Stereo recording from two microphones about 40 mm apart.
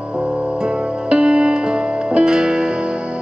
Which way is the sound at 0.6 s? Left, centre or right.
Right.